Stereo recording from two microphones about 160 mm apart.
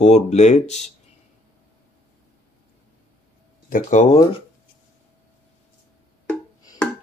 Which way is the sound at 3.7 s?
50° left (ahead or behind).